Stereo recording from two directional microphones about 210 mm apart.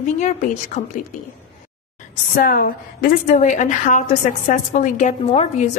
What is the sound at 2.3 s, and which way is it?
A woman's voice, 40° left (ahead or behind).